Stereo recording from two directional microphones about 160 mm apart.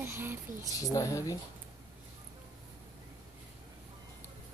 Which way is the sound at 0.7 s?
20° left (ahead or behind).